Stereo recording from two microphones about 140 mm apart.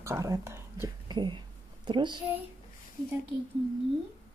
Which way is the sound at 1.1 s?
35° right (ahead or behind).